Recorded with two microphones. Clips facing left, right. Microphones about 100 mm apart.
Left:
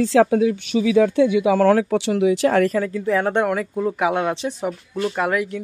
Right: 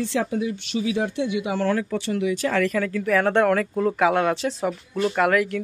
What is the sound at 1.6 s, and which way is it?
Speech, 90° left.